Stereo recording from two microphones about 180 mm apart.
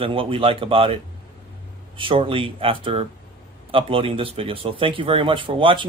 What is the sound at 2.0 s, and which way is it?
Speech, 30° right (ahead or behind).